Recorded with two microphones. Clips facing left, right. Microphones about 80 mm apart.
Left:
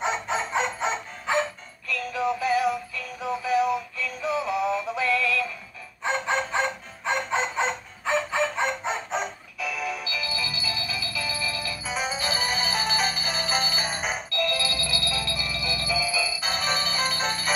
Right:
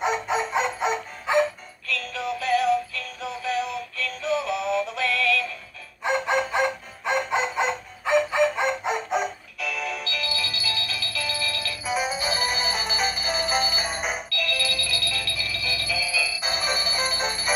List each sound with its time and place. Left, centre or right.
0.0 s music: centre
1.9 s synthetic singing: centre
6.0 s music: centre
9.6 s music: centre
11.8 s music: centre
14.3 s music: left
16.3 s music: centre